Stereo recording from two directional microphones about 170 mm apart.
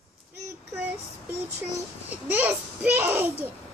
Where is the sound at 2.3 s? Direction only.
10° right (ahead or behind).